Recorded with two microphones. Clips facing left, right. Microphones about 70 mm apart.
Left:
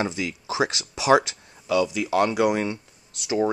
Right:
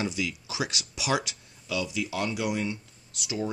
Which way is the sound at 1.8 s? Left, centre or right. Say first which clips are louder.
Left 9 dB; left.